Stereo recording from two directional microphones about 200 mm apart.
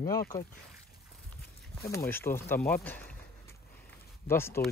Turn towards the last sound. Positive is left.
turn(degrees=10)  # may be behind; listen again after turning